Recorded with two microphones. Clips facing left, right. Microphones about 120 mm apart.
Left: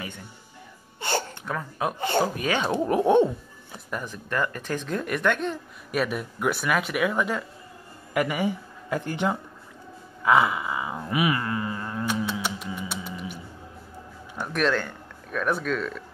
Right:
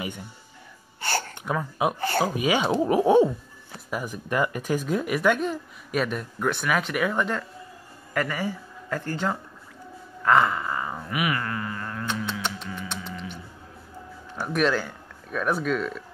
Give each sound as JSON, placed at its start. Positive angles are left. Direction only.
{"t": 1.4, "sound": "speech", "side_deg": -10}
{"t": 2.0, "sound": "speech", "side_deg": 20}
{"t": 2.2, "sound": "speech", "side_deg": -10}
{"t": 10.2, "sound": "a sound", "side_deg": 10}
{"t": 11.1, "sound": "a sound", "side_deg": 25}
{"t": 12.3, "sound": "music", "side_deg": 5}
{"t": 14.3, "sound": "speech", "side_deg": -5}